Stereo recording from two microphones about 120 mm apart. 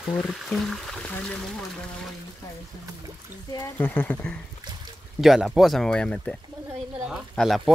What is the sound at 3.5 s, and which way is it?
Speech, 25° left (ahead or behind).